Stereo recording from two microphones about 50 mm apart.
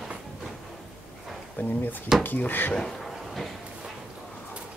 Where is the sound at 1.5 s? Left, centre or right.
Left.